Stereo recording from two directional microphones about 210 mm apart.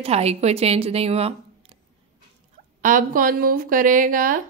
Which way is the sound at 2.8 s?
40° right (ahead or behind).